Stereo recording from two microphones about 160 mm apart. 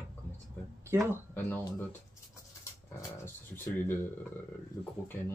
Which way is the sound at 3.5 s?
15° left (ahead or behind).